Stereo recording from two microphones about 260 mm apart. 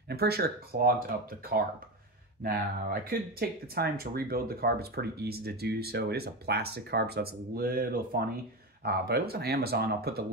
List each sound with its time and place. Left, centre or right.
0.1 s speech: right